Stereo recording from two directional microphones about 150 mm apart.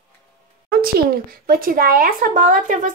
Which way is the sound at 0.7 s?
85° right.